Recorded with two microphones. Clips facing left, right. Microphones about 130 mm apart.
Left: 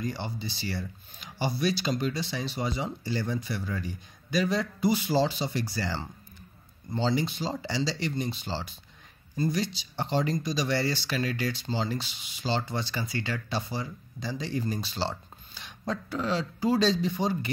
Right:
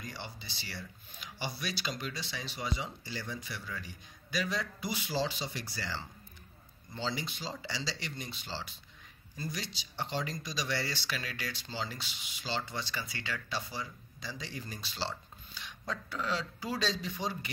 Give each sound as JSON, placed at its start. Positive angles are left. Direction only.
{"t": 0.0, "sound": "speech", "side_deg": 35}